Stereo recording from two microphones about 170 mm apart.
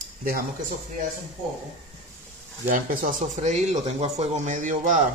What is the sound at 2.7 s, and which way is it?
Speech, 55° right (ahead or behind).